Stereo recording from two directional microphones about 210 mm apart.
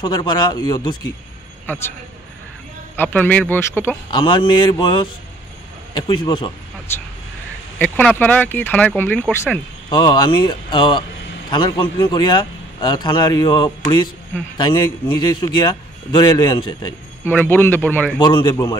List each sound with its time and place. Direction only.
0.0 s speech: 20° left (ahead or behind)
3.0 s speech: 10° left (ahead or behind)
4.1 s speech: 25° left (ahead or behind)
7.8 s speech: 5° left (ahead or behind); by 16.9 s 20° left (ahead or behind)
17.2 s speech: 10° left (ahead or behind)
18.2 s speech: 20° left (ahead or behind)